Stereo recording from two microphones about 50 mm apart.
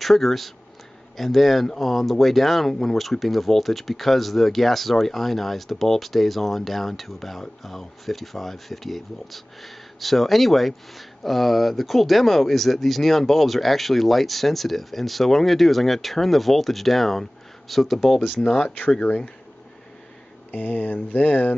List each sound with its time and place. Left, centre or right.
0.0 s speech: centre
20.5 s speech: left